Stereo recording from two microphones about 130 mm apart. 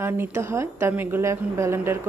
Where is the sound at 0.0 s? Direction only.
15° right (ahead or behind).